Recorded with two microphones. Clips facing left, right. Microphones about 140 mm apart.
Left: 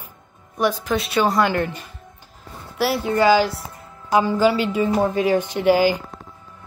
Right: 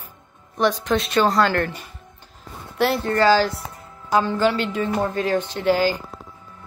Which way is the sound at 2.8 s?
10° left (ahead or behind).